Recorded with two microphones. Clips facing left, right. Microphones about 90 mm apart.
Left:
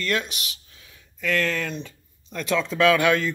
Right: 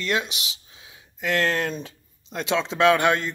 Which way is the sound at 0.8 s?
25° right (ahead or behind).